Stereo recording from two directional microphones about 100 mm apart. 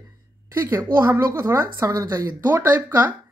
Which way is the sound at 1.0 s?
25° right (ahead or behind).